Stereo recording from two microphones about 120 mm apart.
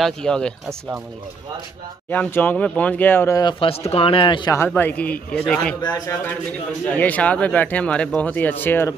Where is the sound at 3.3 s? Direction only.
35° left (ahead or behind).